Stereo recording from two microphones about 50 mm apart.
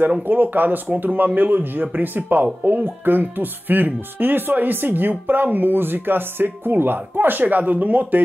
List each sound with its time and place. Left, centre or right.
0.3 s speech: right